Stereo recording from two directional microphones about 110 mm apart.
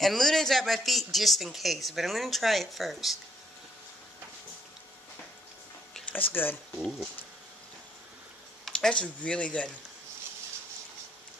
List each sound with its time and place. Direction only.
0.0 s speech: 5° left (ahead or behind)
6.1 s speech: 20° left (ahead or behind)
6.8 s speech: centre (ahead or behind)
8.6 s speech: 5° left (ahead or behind)